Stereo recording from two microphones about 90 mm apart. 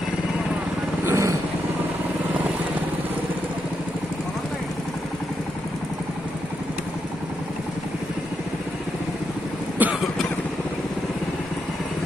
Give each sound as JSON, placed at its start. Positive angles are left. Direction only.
{"t": 1.0, "sound": "vehicle", "side_deg": -30}
{"t": 9.8, "sound": "cough", "side_deg": -20}